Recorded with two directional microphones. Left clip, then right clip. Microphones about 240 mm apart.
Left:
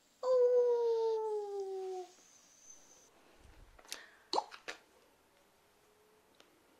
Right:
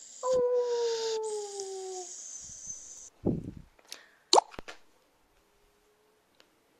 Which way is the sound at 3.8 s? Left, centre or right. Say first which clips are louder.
Even; centre.